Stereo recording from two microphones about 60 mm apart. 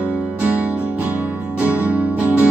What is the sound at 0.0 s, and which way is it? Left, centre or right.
Music, right.